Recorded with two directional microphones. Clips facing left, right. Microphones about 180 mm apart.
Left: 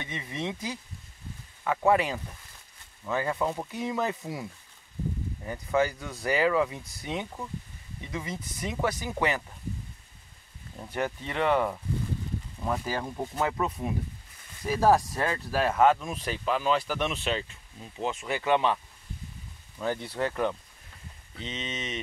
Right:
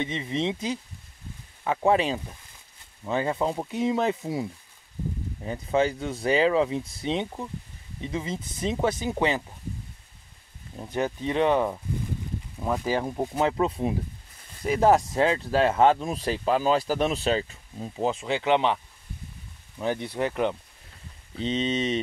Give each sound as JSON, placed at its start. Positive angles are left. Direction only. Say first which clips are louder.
{"t": 0.0, "sound": "speech", "louder": "right 7 dB", "side_deg": -20}
{"t": 10.8, "sound": "speech", "louder": "right 4 dB", "side_deg": -20}
{"t": 12.5, "sound": "speech", "louder": "right 3 dB", "side_deg": -5}
{"t": 12.8, "sound": "speech", "louder": "right 6 dB", "side_deg": -20}
{"t": 19.8, "sound": "speech", "louder": "right 3 dB", "side_deg": -20}
{"t": 21.4, "sound": "speech", "louder": "right 11 dB", "side_deg": -30}